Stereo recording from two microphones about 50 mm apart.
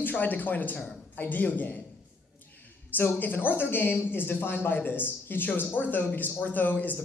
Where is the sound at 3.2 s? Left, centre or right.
Left.